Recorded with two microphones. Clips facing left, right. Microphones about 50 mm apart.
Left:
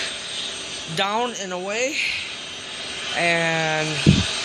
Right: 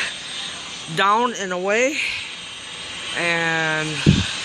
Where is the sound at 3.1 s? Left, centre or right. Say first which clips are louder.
Even; centre.